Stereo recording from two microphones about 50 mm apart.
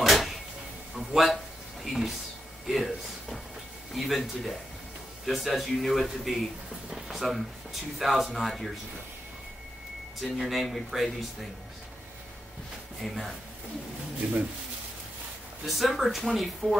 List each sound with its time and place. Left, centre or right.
0.0 s a sound: centre
3.9 s speech: centre
10.3 s speech: centre
13.0 s speech: centre
14.2 s speech: right
15.6 s speech: centre